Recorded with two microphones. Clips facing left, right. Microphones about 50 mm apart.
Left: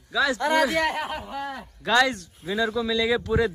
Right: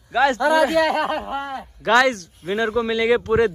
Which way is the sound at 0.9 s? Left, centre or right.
Right.